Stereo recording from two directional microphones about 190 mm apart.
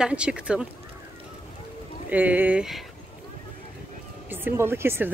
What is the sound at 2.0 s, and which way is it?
Speech, 10° right (ahead or behind).